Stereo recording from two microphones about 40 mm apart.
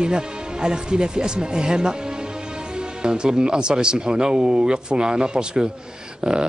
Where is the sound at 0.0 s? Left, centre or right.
Right.